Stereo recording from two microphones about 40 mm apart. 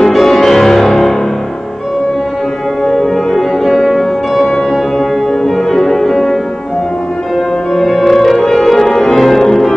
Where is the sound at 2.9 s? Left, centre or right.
Centre.